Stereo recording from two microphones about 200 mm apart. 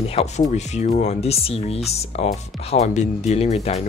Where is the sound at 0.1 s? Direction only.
35° left (ahead or behind).